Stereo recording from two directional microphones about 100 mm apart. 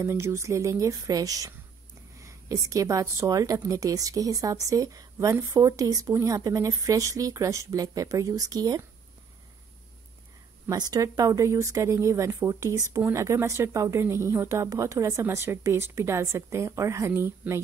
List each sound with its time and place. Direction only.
0.0 s a woman's voice: 30° right (ahead or behind)
10.7 s a woman's voice: 35° right (ahead or behind)